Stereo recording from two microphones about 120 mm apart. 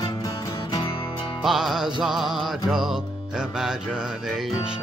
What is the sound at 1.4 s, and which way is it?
Music, 5° right (ahead or behind).